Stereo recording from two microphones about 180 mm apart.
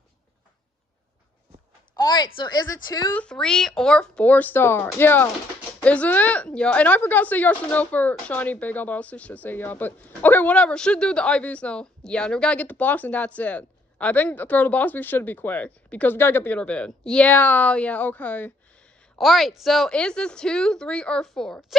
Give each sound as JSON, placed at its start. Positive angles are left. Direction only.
{"t": 2.0, "sound": "a woman's voice", "side_deg": 25}
{"t": 3.2, "sound": "a woman's voice", "side_deg": 5}